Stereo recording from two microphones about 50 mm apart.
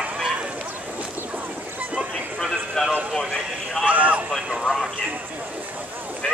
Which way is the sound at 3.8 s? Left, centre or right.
Right.